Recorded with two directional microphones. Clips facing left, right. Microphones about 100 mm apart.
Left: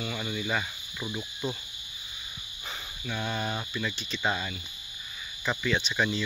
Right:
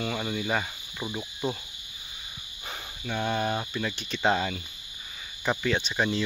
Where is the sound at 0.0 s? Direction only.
55° right (ahead or behind).